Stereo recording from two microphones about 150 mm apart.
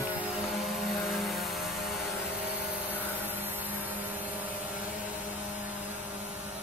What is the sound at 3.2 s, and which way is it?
Vehicle, 15° right (ahead or behind).